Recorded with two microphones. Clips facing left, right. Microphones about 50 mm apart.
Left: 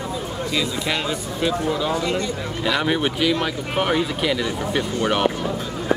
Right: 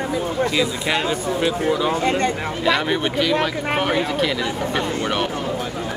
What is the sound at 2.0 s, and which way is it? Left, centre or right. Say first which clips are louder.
Speech: right 4 dB; right.